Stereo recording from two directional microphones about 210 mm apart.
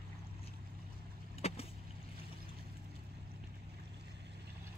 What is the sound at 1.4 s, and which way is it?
Vehicle, 30° left (ahead or behind).